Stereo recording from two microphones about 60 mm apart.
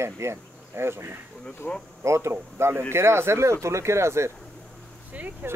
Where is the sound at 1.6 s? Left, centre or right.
Centre.